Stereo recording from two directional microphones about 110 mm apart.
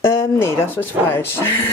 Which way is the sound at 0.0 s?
25° left (ahead or behind).